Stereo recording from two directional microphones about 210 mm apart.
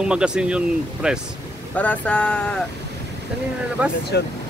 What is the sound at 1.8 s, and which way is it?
Speech, 5° left (ahead or behind).